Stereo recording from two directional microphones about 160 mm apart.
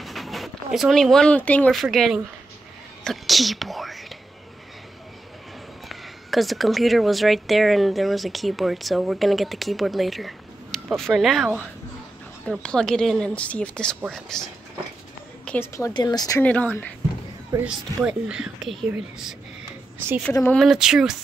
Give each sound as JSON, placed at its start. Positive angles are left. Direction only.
{"t": 0.0, "sound": "speech", "side_deg": 0}
{"t": 5.9, "sound": "a woman's voice", "side_deg": 0}
{"t": 16.4, "sound": "speech", "side_deg": 10}
{"t": 17.6, "sound": "speech", "side_deg": -5}
{"t": 20.4, "sound": "speech", "side_deg": 0}